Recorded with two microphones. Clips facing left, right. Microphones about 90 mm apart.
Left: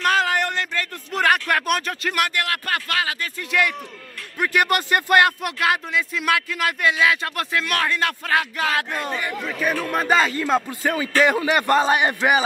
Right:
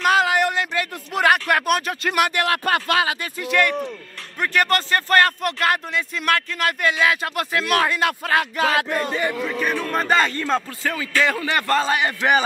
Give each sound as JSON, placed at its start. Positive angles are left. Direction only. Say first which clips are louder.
{"t": 0.0, "sound": "a sound", "louder": "right 2 dB", "side_deg": -5}
{"t": 1.5, "sound": "speech", "louder": "right 2 dB", "side_deg": -5}
{"t": 2.1, "sound": "speech", "louder": "right 5 dB", "side_deg": -20}
{"t": 3.4, "sound": "a man's voice", "louder": "right 3 dB", "side_deg": 5}
{"t": 10.7, "sound": "a man's voice", "louder": "left 2 dB", "side_deg": 20}
{"t": 12.2, "sound": "speech", "louder": "even", "side_deg": 5}